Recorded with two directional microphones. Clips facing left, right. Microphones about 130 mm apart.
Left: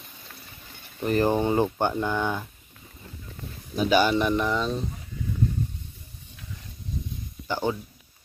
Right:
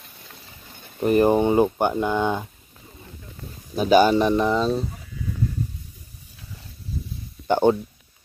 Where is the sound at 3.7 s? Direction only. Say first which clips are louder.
Right 5 dB; 40° right (ahead or behind).